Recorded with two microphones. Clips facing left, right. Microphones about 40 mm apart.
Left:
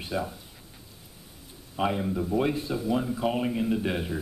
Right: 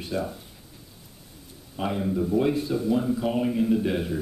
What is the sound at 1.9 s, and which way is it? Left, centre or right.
A man's voice, centre.